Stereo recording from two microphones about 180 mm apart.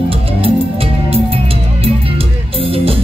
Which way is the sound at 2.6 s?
30° right (ahead or behind).